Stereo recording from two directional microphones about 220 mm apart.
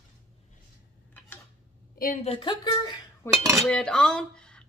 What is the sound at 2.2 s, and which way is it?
Speech, 20° left (ahead or behind).